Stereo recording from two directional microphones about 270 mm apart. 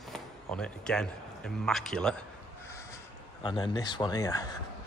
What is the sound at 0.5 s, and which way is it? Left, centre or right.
A man's voice, centre.